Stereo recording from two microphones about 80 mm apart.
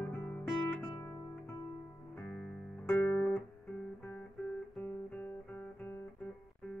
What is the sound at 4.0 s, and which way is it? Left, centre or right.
Music, left.